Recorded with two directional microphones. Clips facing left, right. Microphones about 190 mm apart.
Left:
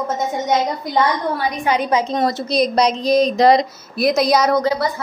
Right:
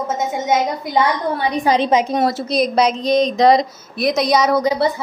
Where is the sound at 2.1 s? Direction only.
5° right (ahead or behind).